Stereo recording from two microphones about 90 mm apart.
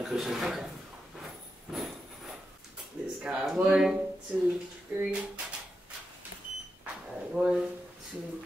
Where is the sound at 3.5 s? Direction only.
10° right (ahead or behind).